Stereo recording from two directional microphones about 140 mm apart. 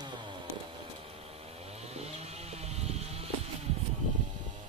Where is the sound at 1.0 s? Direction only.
45° right (ahead or behind).